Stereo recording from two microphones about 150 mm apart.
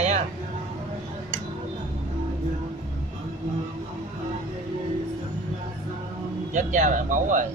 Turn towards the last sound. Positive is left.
turn(degrees=-60)  # may be behind; listen again after turning